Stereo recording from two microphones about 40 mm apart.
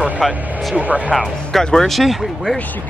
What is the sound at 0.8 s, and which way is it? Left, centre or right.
Speech, right.